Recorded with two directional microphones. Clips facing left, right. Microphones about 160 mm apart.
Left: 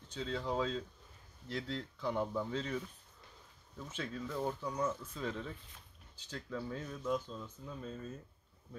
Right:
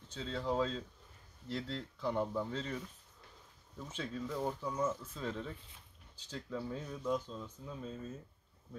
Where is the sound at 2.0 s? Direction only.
5° right (ahead or behind).